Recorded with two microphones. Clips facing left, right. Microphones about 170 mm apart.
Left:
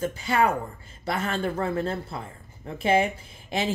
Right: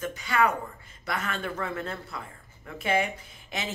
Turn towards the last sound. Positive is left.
turn(degrees=30)  # may be behind; listen again after turning